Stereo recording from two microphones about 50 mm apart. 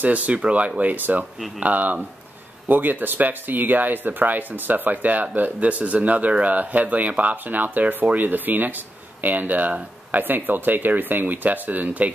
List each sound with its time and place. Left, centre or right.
0.0 s speech: right